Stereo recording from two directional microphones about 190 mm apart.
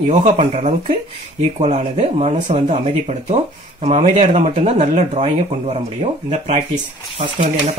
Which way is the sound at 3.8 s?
35° right (ahead or behind).